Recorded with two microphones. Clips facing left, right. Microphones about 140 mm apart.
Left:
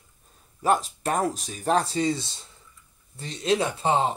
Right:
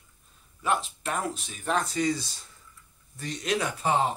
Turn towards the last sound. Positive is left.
turn(degrees=25)  # may be behind; listen again after turning